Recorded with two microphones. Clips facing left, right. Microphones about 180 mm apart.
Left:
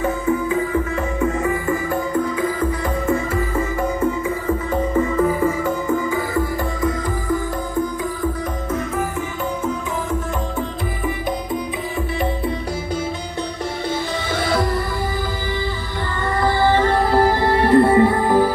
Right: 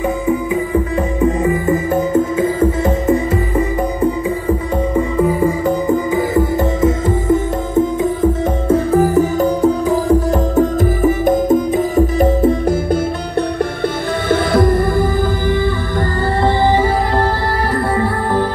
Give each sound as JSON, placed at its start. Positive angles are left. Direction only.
{"t": 1.2, "sound": "music", "side_deg": -20}
{"t": 14.3, "sound": "music", "side_deg": -55}
{"t": 17.6, "sound": "music", "side_deg": 25}